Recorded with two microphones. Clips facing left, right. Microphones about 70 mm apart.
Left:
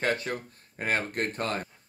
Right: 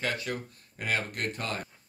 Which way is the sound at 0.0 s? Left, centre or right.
Left.